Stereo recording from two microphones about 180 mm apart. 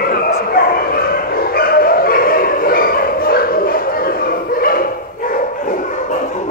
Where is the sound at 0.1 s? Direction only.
55° left (ahead or behind).